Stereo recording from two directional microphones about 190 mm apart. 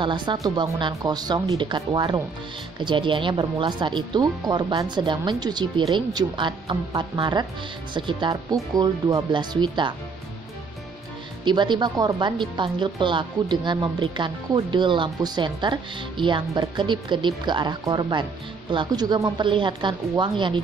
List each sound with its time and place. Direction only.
0.0 s speech: 25° right (ahead or behind)
11.4 s speech: 25° right (ahead or behind)